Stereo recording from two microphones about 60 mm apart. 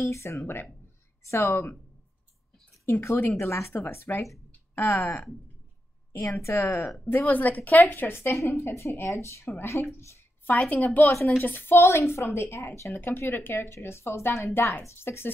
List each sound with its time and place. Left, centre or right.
0.0 s speech: left
2.8 s speech: left
6.2 s a woman's voice: left
7.2 s a woman's voice: left
9.9 s a sound: left
10.7 s a woman's voice: left